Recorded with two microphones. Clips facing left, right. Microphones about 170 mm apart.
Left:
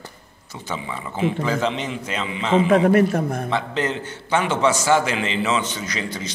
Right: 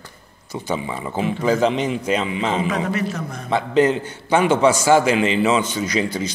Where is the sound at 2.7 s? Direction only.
55° left (ahead or behind).